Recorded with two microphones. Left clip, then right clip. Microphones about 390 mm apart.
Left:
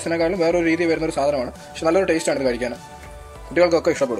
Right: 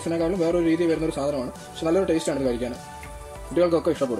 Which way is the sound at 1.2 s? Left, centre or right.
Left.